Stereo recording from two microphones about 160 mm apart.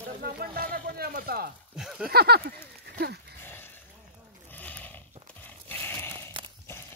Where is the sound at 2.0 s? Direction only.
80° right.